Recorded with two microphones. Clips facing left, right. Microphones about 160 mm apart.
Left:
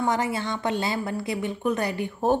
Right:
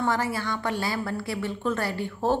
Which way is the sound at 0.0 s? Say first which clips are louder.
Left 1 dB; 20° left (ahead or behind).